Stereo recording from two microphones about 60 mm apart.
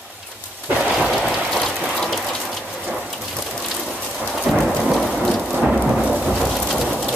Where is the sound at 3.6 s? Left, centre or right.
Centre.